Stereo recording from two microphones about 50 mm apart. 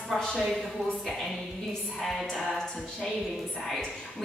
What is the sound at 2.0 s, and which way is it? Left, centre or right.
A woman's voice, centre.